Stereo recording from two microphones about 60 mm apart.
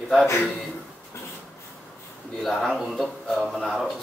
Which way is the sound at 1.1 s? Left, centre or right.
Left.